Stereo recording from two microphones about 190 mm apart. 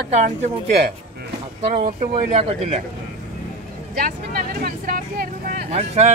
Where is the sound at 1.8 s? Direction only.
30° right (ahead or behind).